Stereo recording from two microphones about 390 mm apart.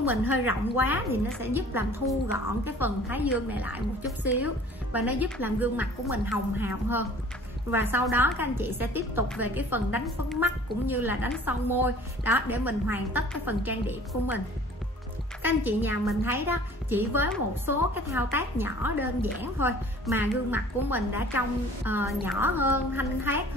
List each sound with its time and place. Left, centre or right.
0.1 s a woman's voice: left
0.7 s a woman's voice: centre
15.4 s a woman's voice: centre